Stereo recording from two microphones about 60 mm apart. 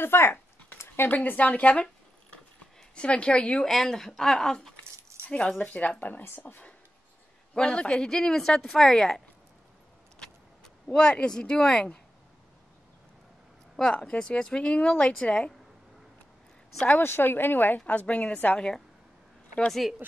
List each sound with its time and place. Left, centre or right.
0.0 s speech: left
2.9 s speech: centre
3.6 s speech: centre
5.2 s keys jangling: centre
5.6 s speech: left
7.5 s speech: centre
10.1 s a sound: centre
13.7 s speech: centre
17.0 s speech: left
17.7 s speech: left
20.0 s speech: right